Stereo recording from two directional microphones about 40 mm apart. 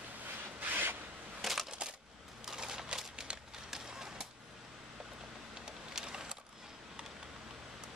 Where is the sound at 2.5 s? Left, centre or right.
Centre.